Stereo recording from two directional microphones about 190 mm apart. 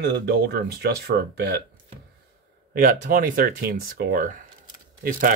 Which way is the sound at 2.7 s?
50° right (ahead or behind).